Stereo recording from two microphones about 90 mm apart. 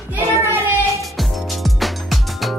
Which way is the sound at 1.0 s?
Centre (ahead or behind).